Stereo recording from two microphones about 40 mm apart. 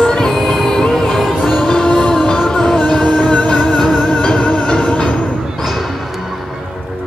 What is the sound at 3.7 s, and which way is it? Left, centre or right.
Music, centre.